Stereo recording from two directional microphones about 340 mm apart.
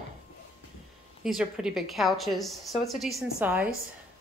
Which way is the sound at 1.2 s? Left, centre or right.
Centre.